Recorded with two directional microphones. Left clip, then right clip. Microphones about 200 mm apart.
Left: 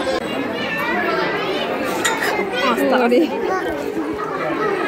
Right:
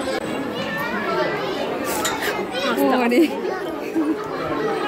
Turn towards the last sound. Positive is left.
turn(degrees=-30)  # may be behind; listen again after turning